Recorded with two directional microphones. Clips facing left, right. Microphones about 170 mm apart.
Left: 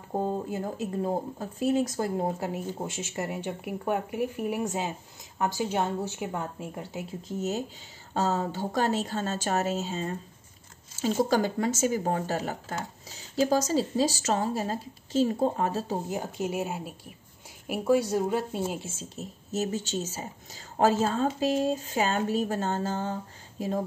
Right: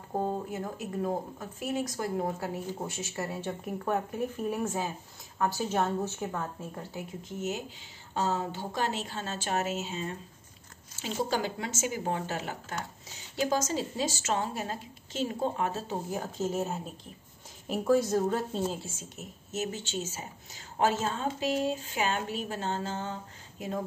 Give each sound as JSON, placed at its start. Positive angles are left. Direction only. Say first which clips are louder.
{"t": 0.5, "sound": "speech", "louder": "left 4 dB", "side_deg": 30}
{"t": 7.2, "sound": "a woman's voice", "louder": "left 5 dB", "side_deg": 35}
{"t": 16.1, "sound": "speech", "louder": "left 1 dB", "side_deg": 15}
{"t": 18.9, "sound": "a woman's voice", "louder": "left 4 dB", "side_deg": 30}